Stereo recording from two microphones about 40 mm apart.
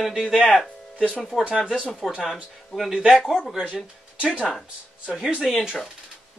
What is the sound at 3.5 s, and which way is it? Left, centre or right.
Speech, centre.